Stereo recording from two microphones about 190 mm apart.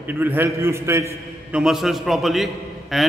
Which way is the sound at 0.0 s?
10° right (ahead or behind).